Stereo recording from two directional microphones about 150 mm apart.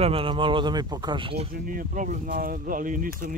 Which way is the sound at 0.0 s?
40° right (ahead or behind).